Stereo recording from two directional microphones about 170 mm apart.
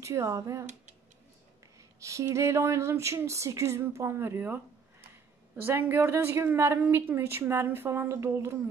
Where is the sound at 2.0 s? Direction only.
15° right (ahead or behind).